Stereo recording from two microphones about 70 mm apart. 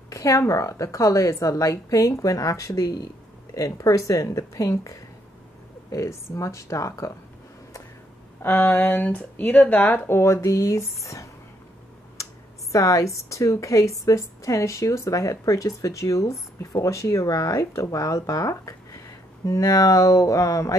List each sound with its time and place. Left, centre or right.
0.1 s a woman's voice: left
3.5 s a woman's voice: left
8.4 s speech: left
12.7 s a woman's voice: left